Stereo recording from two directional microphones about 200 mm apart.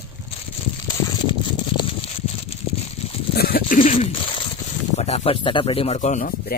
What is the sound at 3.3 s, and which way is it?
Zipper, 50° left (ahead or behind).